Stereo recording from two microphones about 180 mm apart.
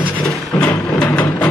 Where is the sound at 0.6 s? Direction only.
5° left (ahead or behind).